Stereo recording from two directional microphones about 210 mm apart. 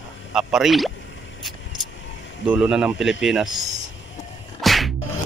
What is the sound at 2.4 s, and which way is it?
Speech, 5° right (ahead or behind).